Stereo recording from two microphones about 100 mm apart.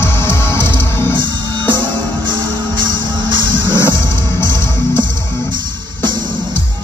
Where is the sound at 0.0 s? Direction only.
25° left (ahead or behind).